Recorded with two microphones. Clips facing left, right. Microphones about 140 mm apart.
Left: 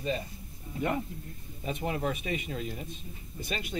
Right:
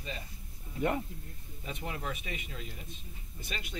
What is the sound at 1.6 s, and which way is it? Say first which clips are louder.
Speech: left 8 dB; 35° left (ahead or behind).